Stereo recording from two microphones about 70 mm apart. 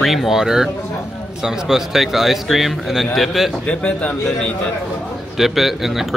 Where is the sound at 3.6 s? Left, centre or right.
Centre.